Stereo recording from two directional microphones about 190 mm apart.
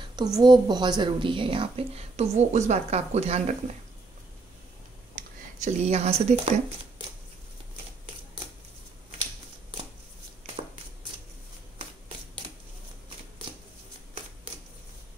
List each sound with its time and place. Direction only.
0.1 s a woman's voice: 20° right (ahead or behind)
5.6 s speech: 35° right (ahead or behind)